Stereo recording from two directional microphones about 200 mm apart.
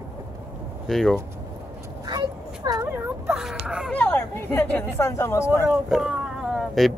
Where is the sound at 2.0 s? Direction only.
20° right (ahead or behind).